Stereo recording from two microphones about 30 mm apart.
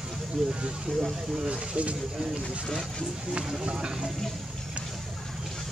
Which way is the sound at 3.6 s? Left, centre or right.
Right.